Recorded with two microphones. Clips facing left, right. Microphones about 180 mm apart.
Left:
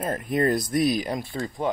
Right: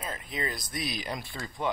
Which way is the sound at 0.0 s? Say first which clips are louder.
Left 11 dB; 55° left (ahead or behind).